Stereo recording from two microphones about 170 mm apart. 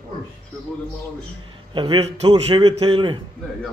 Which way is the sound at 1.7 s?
30° right (ahead or behind).